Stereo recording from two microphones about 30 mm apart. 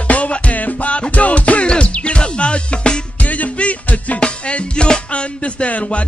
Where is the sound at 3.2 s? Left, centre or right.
Left.